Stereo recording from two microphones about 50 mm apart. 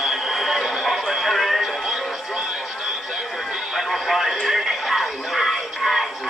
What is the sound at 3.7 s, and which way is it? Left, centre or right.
Television, centre.